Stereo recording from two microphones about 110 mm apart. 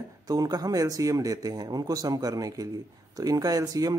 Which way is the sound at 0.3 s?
35° right (ahead or behind).